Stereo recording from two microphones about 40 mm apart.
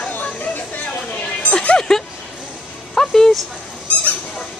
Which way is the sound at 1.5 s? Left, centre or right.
Left.